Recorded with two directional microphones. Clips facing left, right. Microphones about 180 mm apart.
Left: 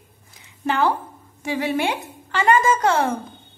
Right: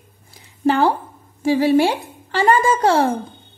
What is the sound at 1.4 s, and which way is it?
A woman's voice, 35° right (ahead or behind).